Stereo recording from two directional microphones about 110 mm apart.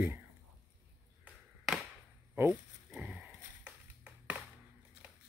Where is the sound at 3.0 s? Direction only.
10° right (ahead or behind).